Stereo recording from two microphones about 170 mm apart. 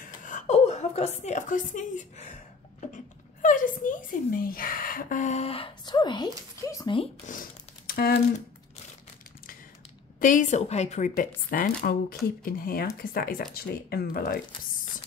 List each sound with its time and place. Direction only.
0.0 s a woman's voice: 50° left (ahead or behind)
3.4 s a woman's voice: 50° left (ahead or behind)
5.9 s speech: 25° left (ahead or behind)
7.2 s crumpling: 55° left (ahead or behind)
10.2 s a woman's voice: 50° left (ahead or behind)